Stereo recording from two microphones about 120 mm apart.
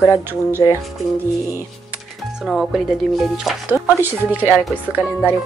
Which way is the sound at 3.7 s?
20° right (ahead or behind).